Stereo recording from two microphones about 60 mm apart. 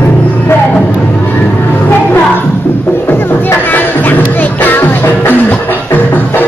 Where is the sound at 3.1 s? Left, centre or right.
Left.